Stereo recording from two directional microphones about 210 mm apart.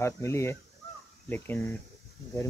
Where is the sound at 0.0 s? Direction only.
15° left (ahead or behind).